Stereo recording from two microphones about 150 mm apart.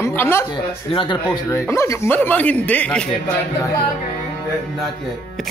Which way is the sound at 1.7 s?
20° left (ahead or behind).